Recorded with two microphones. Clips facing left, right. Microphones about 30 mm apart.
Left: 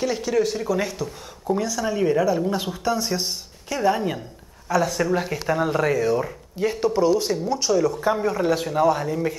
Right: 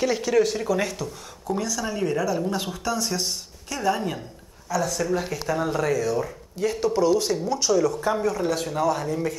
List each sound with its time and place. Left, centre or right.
0.0 s speech: centre
2.0 s speech: left